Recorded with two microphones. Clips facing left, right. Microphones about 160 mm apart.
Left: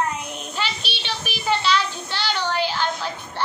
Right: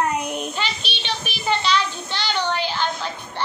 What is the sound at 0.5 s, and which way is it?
Child singing, 5° left (ahead or behind).